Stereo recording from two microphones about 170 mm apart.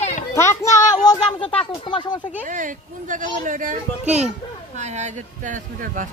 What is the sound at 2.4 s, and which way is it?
Speech, 50° right (ahead or behind).